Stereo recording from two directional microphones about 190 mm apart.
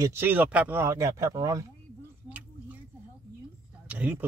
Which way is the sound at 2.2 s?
10° right (ahead or behind).